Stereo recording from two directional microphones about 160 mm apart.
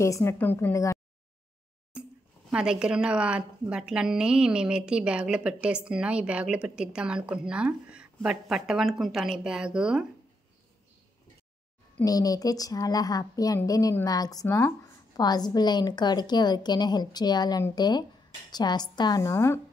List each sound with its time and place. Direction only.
0.0 s a woman's voice: 15° left (ahead or behind)
1.9 s a sound: 5° right (ahead or behind)
2.5 s a woman's voice: 5° right (ahead or behind)
12.0 s a woman's voice: 20° left (ahead or behind)